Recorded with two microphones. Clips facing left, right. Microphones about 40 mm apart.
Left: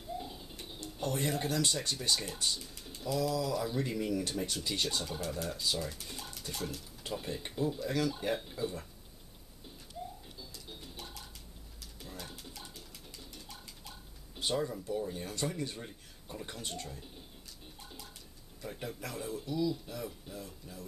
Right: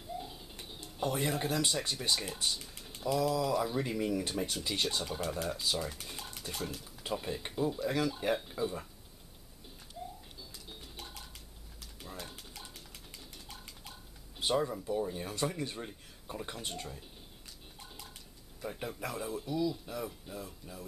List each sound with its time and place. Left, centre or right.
0.2 s music: centre
0.9 s speech: centre
10.5 s music: centre
11.8 s a sound: centre
15.6 s speech: centre
17.7 s music: centre
18.6 s speech: centre